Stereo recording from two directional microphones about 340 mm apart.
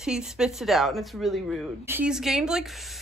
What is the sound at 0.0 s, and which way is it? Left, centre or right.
Speech, centre.